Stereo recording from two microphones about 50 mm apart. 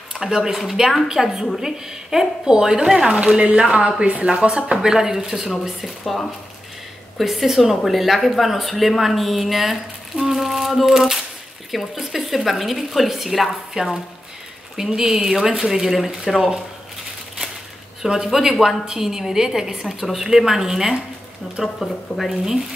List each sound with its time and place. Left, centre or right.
0.1 s a woman's voice: centre
3.1 s a woman's voice: centre
18.0 s a woman's voice: centre
21.7 s speech: centre